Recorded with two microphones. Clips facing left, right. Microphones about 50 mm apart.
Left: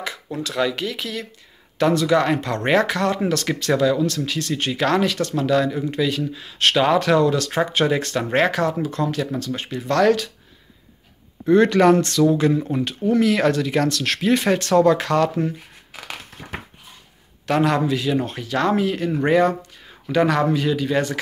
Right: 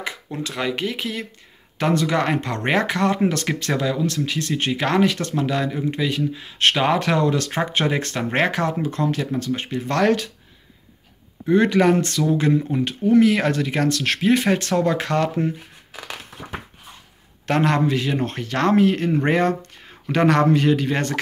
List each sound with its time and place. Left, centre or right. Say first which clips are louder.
0.0 s speech: left 1 dB; right
11.4 s speech: left 2 dB; centre
17.5 s speech: even; right